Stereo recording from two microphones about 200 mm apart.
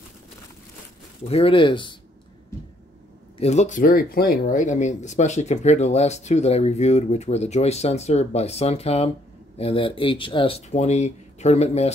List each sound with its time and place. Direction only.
1.3 s speech: 25° left (ahead or behind)
3.3 s speech: 35° left (ahead or behind)